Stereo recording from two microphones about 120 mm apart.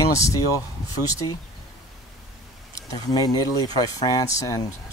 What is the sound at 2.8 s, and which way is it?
Speech, 30° left (ahead or behind).